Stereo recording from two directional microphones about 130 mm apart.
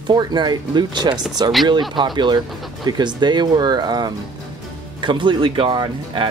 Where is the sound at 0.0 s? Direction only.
35° right (ahead or behind).